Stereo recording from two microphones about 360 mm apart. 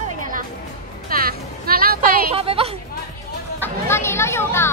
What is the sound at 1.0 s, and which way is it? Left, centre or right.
Music, right.